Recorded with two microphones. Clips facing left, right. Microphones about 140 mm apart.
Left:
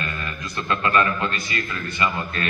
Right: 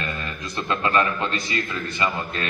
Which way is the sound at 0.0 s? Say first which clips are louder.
Even; 25° right (ahead or behind).